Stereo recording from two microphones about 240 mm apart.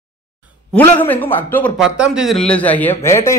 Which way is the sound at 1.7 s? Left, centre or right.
Centre.